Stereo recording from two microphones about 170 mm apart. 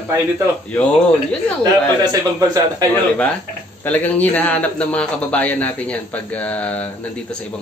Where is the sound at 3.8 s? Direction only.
10° left (ahead or behind).